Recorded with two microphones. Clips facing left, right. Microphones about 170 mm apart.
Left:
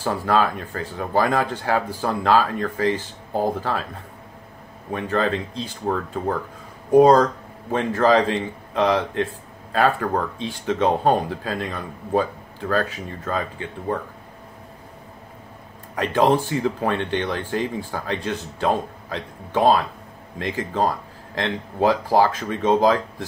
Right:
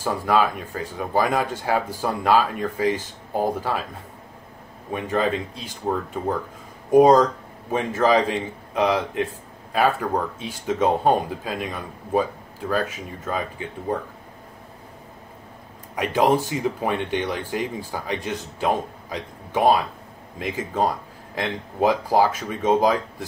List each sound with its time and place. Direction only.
0.0 s speech: 10° right (ahead or behind)
4.9 s speech: 10° right (ahead or behind)
16.0 s speech: 10° right (ahead or behind)